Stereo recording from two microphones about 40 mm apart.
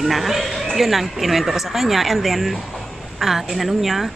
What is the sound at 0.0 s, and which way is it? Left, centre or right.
Speech, centre.